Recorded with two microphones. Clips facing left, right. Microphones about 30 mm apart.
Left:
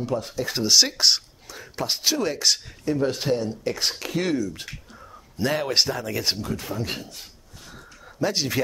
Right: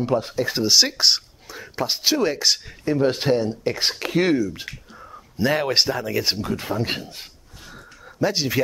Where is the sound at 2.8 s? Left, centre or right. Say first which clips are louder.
Right 4 dB; right.